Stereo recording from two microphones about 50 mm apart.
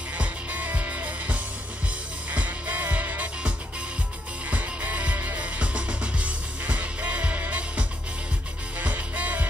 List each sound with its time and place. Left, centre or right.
0.2 s music: right
8.7 s music: right